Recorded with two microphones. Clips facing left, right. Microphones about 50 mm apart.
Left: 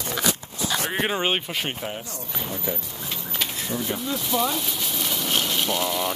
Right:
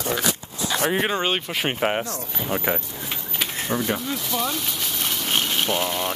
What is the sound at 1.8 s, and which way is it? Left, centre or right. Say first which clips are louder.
Speech: right 9 dB; right.